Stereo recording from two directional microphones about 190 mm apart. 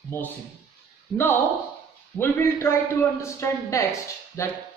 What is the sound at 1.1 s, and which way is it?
A woman's voice, 10° left (ahead or behind).